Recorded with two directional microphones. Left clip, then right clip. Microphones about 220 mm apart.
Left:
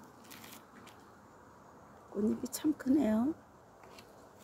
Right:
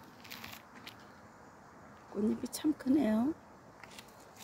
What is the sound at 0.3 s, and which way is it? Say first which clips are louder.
Biting: right 6 dB; 20° left (ahead or behind).